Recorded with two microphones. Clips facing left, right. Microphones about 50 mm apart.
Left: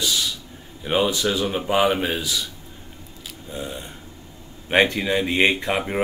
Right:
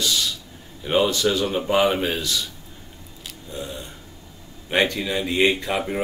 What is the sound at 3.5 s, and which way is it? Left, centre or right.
Speech, centre.